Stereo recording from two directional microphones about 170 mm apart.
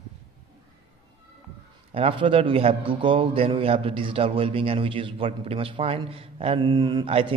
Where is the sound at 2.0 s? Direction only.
30° right (ahead or behind).